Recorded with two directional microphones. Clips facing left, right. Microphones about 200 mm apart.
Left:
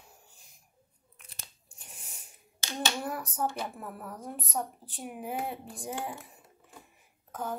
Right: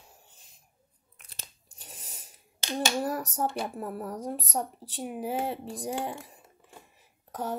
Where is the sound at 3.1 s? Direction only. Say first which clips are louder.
Right 3 dB; 35° right (ahead or behind).